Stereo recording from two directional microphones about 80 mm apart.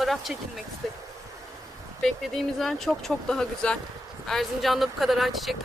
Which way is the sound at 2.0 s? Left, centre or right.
Centre.